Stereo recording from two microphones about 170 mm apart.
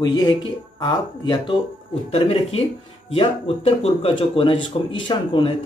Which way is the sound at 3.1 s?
35° left (ahead or behind).